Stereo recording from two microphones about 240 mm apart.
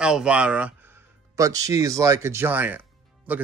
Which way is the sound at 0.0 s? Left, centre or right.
Centre.